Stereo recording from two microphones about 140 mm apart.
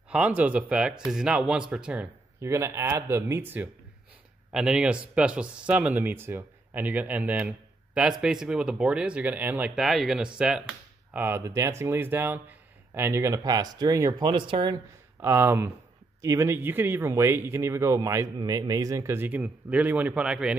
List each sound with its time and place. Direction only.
0.1 s speech: 10° right (ahead or behind)
2.4 s speech: 20° right (ahead or behind)
4.5 s speech: 5° right (ahead or behind)
9.8 s speech: centre (ahead or behind)
11.2 s speech: 20° right (ahead or behind)
14.2 s speech: 35° right (ahead or behind)
15.2 s speech: 20° right (ahead or behind)